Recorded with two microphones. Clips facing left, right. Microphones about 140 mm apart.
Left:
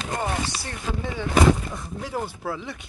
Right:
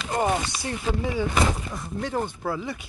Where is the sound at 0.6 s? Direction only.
10° right (ahead or behind).